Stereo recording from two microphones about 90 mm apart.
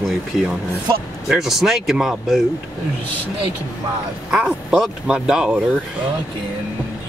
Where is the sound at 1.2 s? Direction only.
5° right (ahead or behind).